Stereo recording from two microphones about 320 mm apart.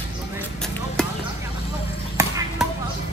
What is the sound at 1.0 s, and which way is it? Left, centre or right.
Speech, centre.